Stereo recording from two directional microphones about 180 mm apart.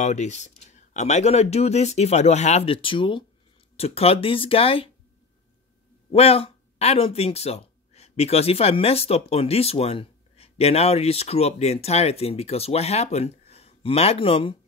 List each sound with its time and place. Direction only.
0.0 s speech: 40° left (ahead or behind)
6.1 s speech: 35° left (ahead or behind)